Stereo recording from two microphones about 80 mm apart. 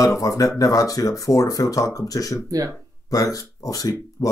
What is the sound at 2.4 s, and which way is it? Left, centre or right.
Speech, right.